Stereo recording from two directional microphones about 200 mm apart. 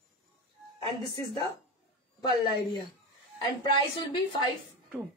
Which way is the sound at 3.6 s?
25° left (ahead or behind).